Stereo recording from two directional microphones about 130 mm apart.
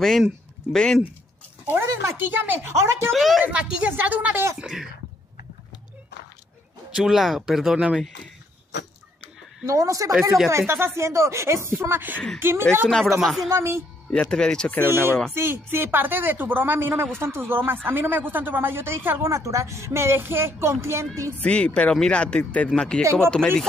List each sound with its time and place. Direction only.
0.0 s speech: centre (ahead or behind)
1.7 s a woman's voice: 20° right (ahead or behind)
3.1 s speech: centre (ahead or behind)
3.5 s a woman's voice: 10° right (ahead or behind)
4.6 s speech: 5° right (ahead or behind)
7.0 s speech: centre (ahead or behind)
9.7 s a woman's voice: 25° right (ahead or behind)
12.8 s speech: centre (ahead or behind)
13.5 s a woman's voice: 20° right (ahead or behind)
14.1 s speech: 5° left (ahead or behind)
14.9 s a woman's voice: 15° right (ahead or behind)
21.4 s speech: 10° left (ahead or behind)